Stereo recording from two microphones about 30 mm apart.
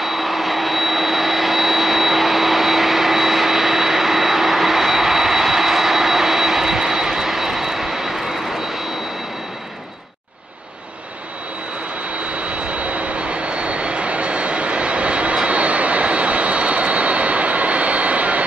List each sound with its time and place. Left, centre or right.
0.0 s vehicle: centre
12.4 s vehicle: right